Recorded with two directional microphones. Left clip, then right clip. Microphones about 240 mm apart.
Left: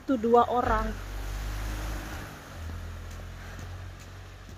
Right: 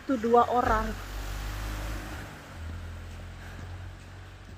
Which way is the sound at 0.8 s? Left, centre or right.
Right.